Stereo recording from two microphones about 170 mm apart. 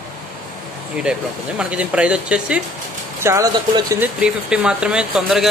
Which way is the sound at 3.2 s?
20° right (ahead or behind).